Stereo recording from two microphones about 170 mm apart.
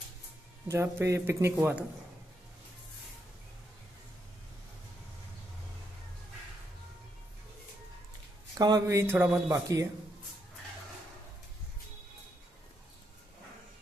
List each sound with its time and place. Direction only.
0.7 s speech: 15° right (ahead or behind)
8.5 s speech: 20° right (ahead or behind)